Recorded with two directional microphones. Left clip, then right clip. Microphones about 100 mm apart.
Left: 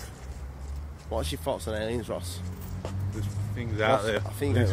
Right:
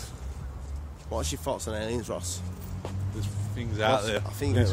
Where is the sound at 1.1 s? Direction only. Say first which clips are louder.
Left 1 dB; 5° right (ahead or behind).